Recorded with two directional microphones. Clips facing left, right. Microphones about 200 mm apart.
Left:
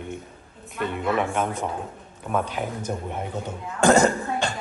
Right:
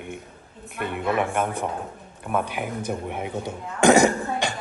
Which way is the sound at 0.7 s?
55° right (ahead or behind).